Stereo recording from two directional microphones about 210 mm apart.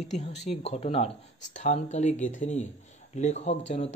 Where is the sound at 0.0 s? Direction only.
35° left (ahead or behind).